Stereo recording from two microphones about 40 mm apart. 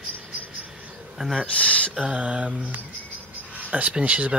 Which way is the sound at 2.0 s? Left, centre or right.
Right.